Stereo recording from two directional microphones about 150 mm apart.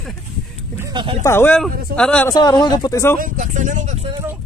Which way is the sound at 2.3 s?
30° left (ahead or behind).